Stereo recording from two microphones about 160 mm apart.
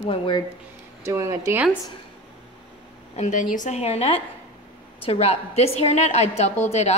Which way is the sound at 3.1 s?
50° left (ahead or behind).